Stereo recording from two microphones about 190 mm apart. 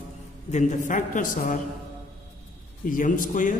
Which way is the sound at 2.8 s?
45° left (ahead or behind).